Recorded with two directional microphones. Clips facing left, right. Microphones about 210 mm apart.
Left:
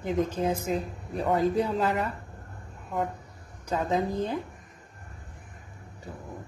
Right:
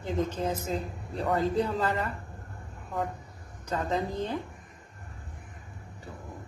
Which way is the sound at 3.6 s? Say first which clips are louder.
Left 3 dB; 10° left (ahead or behind).